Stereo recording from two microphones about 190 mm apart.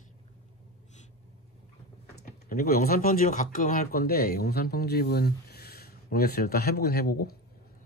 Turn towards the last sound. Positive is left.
turn(degrees=55)  # may be behind; listen again after turning